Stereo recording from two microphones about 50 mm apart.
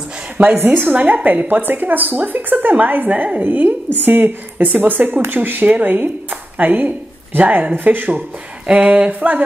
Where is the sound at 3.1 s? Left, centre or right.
Right.